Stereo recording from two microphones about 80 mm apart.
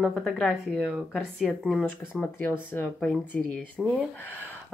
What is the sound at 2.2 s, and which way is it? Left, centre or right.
Speech, left.